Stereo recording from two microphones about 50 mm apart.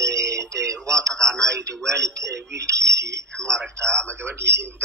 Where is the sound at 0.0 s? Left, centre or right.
Right.